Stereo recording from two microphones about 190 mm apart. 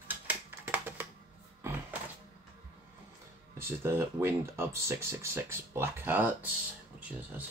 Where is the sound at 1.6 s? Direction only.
10° right (ahead or behind).